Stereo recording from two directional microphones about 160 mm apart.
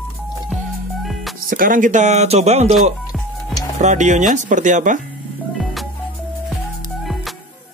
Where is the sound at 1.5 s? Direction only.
60° right (ahead or behind); by 2.8 s 40° right (ahead or behind).